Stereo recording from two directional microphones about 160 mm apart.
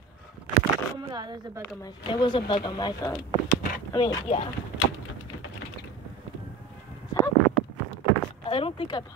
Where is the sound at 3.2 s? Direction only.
65° left (ahead or behind).